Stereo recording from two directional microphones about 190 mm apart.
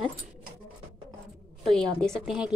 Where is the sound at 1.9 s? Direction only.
5° left (ahead or behind).